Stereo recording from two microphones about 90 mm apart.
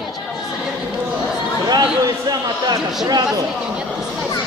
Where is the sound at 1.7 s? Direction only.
50° right (ahead or behind).